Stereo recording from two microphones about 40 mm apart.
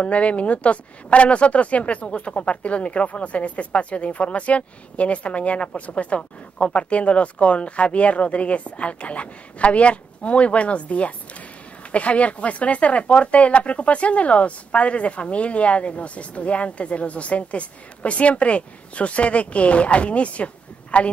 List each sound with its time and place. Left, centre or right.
0.0 s speech: left